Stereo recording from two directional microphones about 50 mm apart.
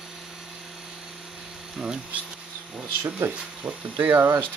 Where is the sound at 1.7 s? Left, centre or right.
Centre.